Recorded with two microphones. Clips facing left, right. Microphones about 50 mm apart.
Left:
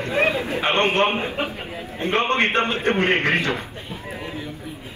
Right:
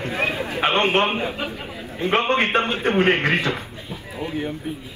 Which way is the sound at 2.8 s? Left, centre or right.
Left.